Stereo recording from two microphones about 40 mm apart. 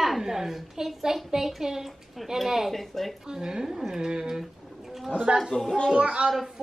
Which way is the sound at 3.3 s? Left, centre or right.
Centre.